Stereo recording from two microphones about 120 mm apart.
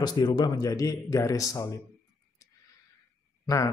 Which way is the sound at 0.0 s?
35° left (ahead or behind).